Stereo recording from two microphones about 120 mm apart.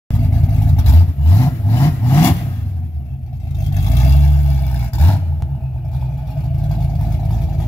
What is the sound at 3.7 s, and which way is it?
Vehicle, 30° left (ahead or behind).